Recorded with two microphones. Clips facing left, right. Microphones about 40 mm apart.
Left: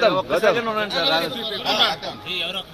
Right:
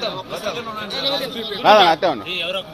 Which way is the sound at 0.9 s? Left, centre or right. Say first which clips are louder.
Left 2 dB; left.